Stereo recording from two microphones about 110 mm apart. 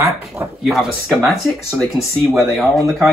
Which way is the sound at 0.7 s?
5° right (ahead or behind).